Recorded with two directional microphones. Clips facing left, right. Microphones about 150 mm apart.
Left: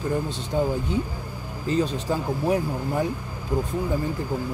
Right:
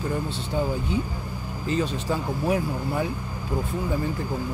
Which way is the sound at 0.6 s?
45° left (ahead or behind).